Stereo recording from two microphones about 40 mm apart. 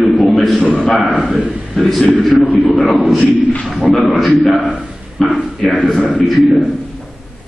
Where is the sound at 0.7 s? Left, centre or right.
Left.